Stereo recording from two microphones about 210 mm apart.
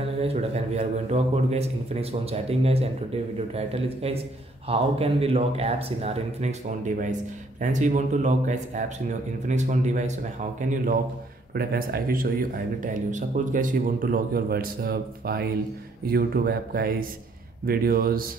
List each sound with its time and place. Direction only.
0.2 s a man's voice: 30° right (ahead or behind); by 18.3 s 45° right (ahead or behind)